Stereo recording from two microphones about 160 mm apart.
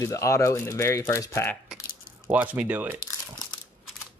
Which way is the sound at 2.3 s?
10° right (ahead or behind).